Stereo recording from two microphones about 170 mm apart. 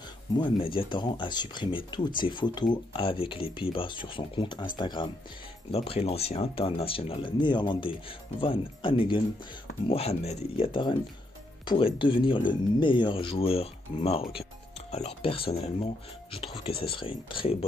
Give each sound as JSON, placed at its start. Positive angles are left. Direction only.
{"t": 0.4, "sound": "speech", "side_deg": 30}